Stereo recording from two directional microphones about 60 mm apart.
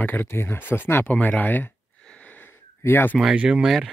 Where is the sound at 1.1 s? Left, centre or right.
Left.